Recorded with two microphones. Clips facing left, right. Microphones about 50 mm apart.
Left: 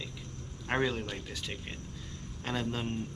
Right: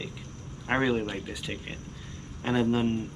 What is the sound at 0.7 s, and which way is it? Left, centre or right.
Speech, centre.